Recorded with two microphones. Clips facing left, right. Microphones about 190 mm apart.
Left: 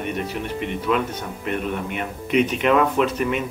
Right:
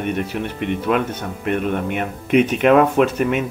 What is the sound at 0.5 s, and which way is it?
Speech, 55° right (ahead or behind).